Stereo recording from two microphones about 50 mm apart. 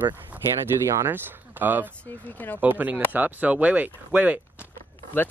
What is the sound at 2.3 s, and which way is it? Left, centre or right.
Speech, left.